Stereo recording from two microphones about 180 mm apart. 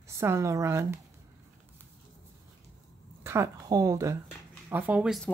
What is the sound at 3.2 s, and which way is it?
Speech, 15° right (ahead or behind).